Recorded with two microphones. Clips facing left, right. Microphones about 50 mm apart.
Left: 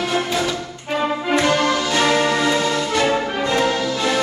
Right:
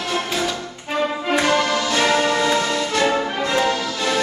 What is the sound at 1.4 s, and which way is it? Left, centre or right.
Music, centre.